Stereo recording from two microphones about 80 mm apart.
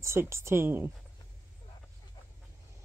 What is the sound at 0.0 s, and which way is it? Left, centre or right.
Speech, right.